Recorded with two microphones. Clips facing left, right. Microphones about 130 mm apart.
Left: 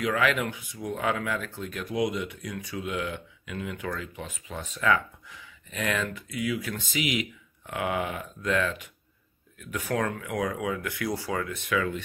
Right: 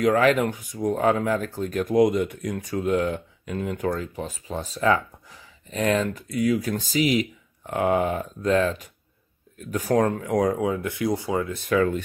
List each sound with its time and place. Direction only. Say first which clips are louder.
0.0 s speech: right 7 dB; 40° right (ahead or behind); by 11.5 s 20° right (ahead or behind)
11.5 s speech: right 9 dB; 40° right (ahead or behind)